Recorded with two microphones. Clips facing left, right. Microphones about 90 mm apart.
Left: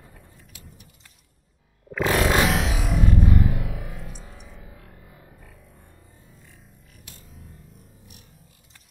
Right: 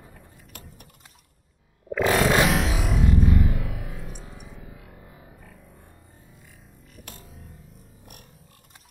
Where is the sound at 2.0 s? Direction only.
15° right (ahead or behind).